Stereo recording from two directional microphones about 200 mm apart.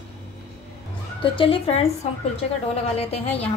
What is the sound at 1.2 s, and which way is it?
A woman's voice, 25° left (ahead or behind).